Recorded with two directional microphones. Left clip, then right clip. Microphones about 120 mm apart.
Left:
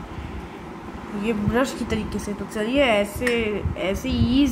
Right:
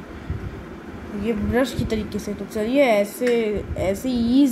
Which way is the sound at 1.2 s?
5° right (ahead or behind).